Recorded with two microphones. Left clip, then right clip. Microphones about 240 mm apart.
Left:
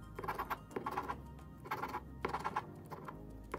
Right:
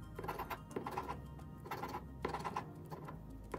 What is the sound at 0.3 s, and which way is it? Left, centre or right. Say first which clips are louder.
Patter: left 3 dB; centre.